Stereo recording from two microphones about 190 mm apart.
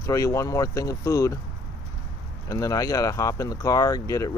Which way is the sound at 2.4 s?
20° left (ahead or behind).